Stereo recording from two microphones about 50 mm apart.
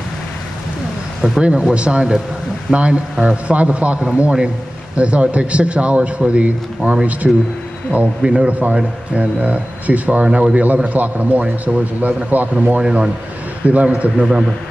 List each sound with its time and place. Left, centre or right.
1.4 s a man's voice: right
12.8 s speech: centre
13.7 s speech: right
14.2 s speech: centre